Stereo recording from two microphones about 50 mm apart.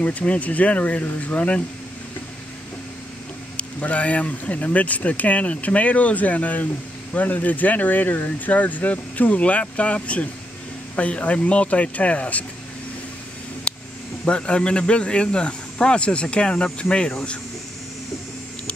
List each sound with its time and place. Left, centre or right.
0.0 s speech: left
3.5 s speech: left
13.7 s a sound: centre
14.2 s speech: left